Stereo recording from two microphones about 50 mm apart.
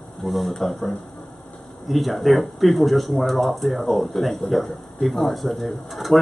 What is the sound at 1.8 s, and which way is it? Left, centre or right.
Speech, centre.